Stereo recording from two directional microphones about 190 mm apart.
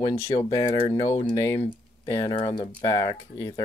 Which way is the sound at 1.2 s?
20° left (ahead or behind).